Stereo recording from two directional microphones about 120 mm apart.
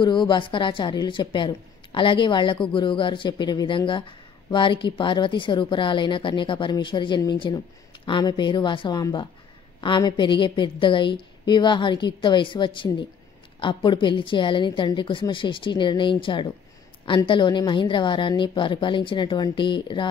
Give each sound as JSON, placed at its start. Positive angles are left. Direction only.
{"t": 0.0, "sound": "a woman's voice", "side_deg": 40}